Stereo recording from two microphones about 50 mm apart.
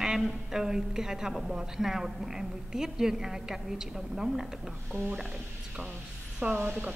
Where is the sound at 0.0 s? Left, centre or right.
Centre.